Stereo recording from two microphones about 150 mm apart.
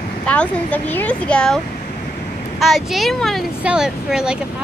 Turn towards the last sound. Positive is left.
turn(degrees=-5)  # may be behind; listen again after turning